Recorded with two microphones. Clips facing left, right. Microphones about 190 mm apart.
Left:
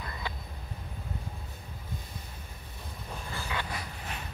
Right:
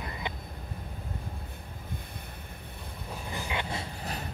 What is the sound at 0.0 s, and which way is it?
Vehicle, 20° right (ahead or behind).